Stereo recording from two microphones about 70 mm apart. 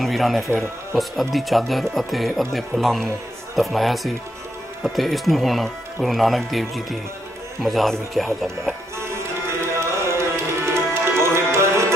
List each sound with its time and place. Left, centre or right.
0.0 s speech: centre
10.0 s tabla: right